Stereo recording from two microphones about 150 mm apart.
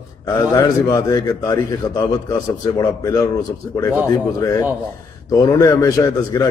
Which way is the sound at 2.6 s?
25° left (ahead or behind).